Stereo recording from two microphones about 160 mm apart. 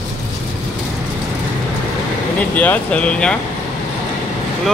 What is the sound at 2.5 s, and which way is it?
Speech, 10° left (ahead or behind).